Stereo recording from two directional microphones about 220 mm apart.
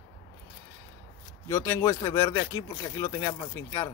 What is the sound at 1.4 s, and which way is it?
A man's voice, 10° left (ahead or behind).